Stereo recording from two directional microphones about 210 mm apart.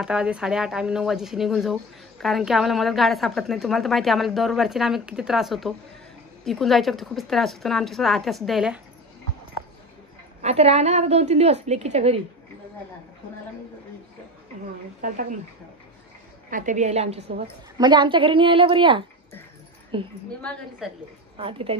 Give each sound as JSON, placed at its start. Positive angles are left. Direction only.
{"t": 0.0, "sound": "speech", "side_deg": -5}
{"t": 10.4, "sound": "a woman's voice", "side_deg": -30}
{"t": 15.0, "sound": "a woman's voice", "side_deg": -40}
{"t": 16.4, "sound": "a woman's voice", "side_deg": -40}
{"t": 20.8, "sound": "speech", "side_deg": 0}
{"t": 21.4, "sound": "speech", "side_deg": -25}